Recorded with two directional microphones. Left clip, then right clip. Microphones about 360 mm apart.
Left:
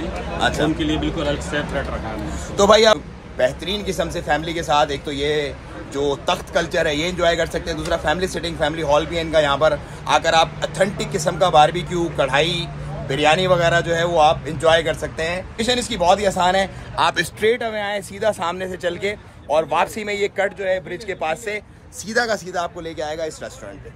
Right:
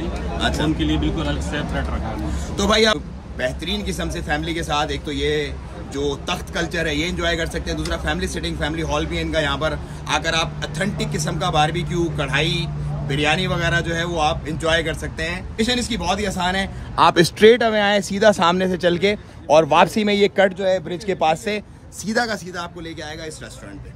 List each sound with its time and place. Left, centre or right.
0.4 s speech: centre
0.7 s speech: centre
2.5 s a man's voice: centre
16.9 s speech: right
22.5 s a man's voice: centre